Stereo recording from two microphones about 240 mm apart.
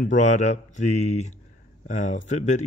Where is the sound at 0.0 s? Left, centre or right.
Left.